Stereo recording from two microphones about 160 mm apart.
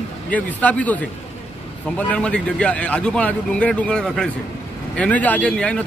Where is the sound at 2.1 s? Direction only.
5° left (ahead or behind).